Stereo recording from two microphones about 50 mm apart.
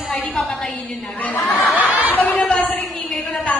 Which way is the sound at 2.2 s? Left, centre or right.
Left.